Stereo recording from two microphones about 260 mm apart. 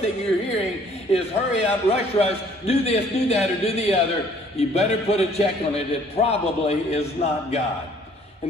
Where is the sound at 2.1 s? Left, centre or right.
Left.